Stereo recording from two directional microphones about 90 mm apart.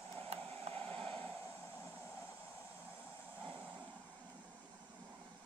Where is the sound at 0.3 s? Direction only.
90° right.